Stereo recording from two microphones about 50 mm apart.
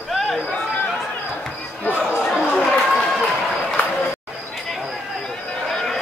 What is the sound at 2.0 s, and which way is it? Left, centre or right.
Chatter, centre.